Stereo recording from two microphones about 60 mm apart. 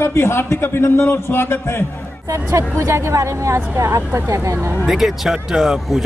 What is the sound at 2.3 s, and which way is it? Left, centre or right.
Speech, right.